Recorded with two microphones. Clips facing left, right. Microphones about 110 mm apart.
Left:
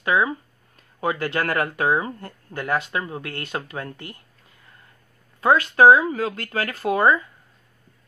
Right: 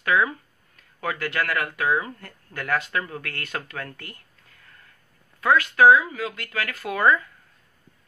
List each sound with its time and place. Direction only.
0.0 s speech: 25° left (ahead or behind)
5.4 s speech: 30° left (ahead or behind)